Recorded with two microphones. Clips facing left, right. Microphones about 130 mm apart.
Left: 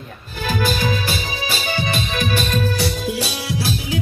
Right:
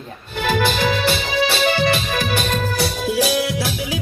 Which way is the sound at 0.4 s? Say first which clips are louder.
Right 3 dB; 60° right (ahead or behind).